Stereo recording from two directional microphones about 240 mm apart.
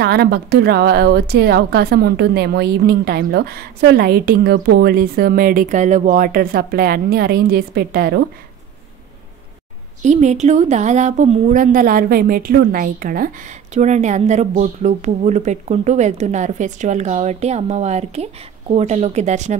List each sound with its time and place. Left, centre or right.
0.0 s a woman's voice: right
10.0 s a woman's voice: right